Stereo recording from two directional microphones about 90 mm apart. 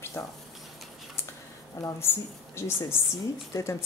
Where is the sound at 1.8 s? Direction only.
30° left (ahead or behind).